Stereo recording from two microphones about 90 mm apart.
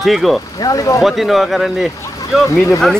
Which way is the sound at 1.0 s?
Centre (ahead or behind).